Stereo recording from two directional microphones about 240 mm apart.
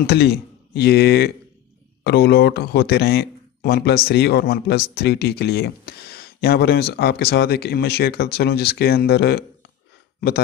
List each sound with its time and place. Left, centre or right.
0.0 s speech: left